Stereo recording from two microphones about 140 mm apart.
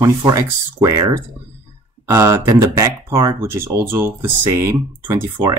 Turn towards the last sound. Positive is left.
turn(degrees=-15)  # may be behind; listen again after turning